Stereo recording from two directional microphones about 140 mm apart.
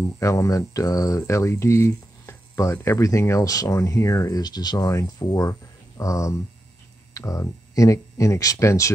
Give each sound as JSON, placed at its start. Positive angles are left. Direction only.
{"t": 0.2, "sound": "speech", "side_deg": 20}